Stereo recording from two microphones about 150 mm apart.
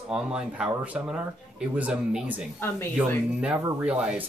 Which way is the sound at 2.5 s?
15° left (ahead or behind).